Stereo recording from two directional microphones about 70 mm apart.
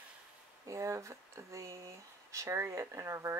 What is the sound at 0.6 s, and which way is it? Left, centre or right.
Speech, right.